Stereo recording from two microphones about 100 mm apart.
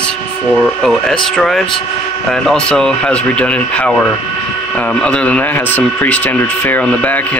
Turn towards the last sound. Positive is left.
turn(degrees=15)  # may be behind; listen again after turning